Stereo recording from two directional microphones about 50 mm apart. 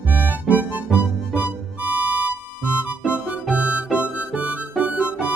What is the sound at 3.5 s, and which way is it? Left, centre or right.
Music, right.